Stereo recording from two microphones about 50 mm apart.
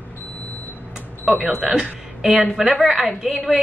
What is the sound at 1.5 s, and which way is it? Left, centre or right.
Speech, centre.